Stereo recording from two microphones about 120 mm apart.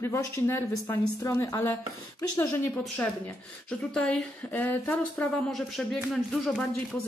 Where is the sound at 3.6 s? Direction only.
10° left (ahead or behind).